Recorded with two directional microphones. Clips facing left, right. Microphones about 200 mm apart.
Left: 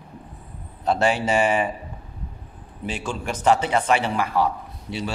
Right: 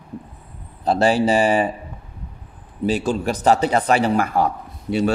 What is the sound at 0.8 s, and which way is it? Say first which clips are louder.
Speech: right 4 dB; 35° right (ahead or behind).